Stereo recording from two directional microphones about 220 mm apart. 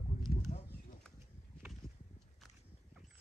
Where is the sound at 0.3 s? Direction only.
40° left (ahead or behind).